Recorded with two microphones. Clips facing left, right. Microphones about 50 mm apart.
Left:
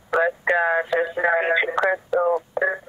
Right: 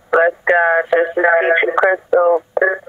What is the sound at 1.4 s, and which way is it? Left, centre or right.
Radio, right.